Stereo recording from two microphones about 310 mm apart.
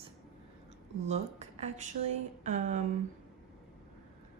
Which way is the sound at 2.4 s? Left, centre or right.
Right.